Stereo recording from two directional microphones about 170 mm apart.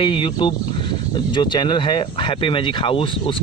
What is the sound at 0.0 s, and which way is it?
Speech, 30° left (ahead or behind).